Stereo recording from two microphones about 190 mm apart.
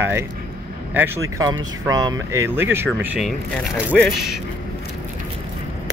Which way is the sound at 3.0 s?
Centre (ahead or behind).